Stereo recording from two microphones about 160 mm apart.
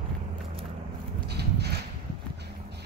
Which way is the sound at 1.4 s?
90° right.